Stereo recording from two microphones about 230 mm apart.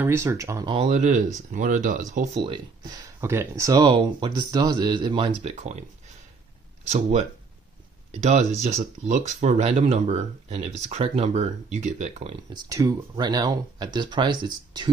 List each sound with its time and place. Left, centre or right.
0.0 s speech: centre; by 2.2 s right
3.2 s speech: centre; by 5.9 s right
6.9 s speech: right